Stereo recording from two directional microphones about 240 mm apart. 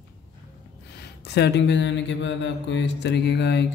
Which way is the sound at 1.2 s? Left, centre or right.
Left.